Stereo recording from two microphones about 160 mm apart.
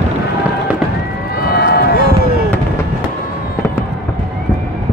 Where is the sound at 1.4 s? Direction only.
75° left (ahead or behind).